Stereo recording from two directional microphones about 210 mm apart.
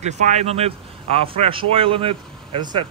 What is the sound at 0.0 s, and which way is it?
Speech, 35° right (ahead or behind).